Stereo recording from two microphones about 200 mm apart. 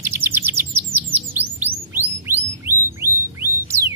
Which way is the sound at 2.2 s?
10° right (ahead or behind).